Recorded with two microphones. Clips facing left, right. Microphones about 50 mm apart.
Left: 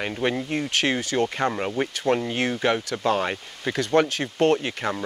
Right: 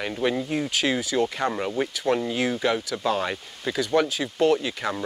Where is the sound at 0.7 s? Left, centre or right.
Left.